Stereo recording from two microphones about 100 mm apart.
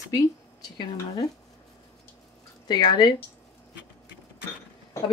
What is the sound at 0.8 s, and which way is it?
Speech, 50° left (ahead or behind).